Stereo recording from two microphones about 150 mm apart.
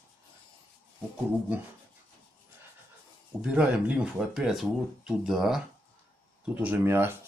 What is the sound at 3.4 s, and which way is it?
Speech, 5° right (ahead or behind).